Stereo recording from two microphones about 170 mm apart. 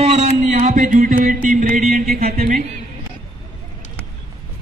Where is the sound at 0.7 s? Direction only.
50° right (ahead or behind).